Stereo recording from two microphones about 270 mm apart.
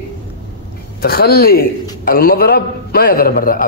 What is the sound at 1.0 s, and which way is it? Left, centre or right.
A man's voice, left.